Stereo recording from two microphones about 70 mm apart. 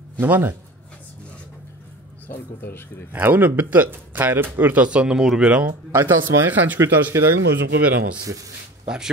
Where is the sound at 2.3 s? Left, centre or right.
Left.